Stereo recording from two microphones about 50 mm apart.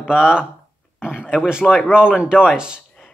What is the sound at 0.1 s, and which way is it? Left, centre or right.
A man's voice, centre.